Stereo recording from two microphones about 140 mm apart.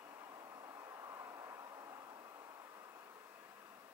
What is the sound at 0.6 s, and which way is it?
Vehicle, 20° right (ahead or behind).